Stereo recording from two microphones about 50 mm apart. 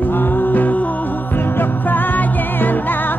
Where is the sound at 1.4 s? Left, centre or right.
Left.